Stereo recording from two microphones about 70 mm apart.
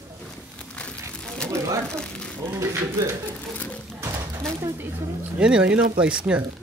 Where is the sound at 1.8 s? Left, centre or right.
Centre.